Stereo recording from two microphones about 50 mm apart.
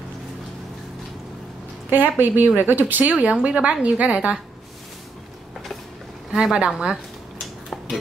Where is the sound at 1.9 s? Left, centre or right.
Right.